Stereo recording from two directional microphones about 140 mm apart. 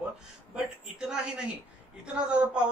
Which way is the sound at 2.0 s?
10° right (ahead or behind).